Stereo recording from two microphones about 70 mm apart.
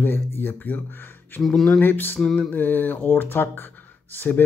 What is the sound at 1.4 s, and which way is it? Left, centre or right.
Speech, centre.